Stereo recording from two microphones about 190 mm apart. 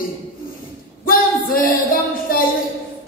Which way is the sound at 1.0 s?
50° left (ahead or behind).